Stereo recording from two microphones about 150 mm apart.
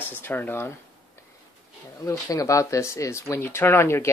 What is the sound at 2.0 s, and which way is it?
Speech, 20° left (ahead or behind).